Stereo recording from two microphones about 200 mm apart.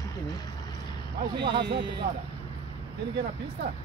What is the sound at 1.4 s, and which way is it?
Speech, 55° right (ahead or behind).